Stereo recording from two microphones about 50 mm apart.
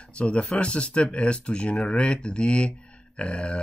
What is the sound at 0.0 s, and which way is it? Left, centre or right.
Speech, left.